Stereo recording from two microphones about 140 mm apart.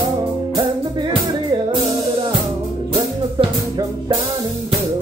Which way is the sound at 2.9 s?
35° right (ahead or behind).